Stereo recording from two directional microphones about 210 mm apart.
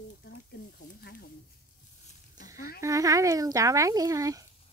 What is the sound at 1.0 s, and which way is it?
Snake, 45° left (ahead or behind).